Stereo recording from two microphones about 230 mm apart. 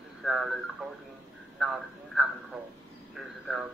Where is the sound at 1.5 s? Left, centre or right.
Centre.